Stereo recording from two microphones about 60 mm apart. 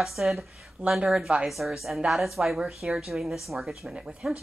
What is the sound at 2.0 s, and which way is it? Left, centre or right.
Speech, centre.